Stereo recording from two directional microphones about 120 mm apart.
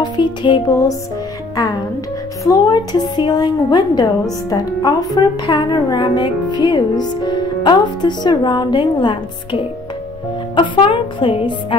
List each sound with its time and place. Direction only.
0.0 s music: 40° left (ahead or behind)
0.7 s music: 30° left (ahead or behind)
2.4 s a woman's voice: 35° left (ahead or behind)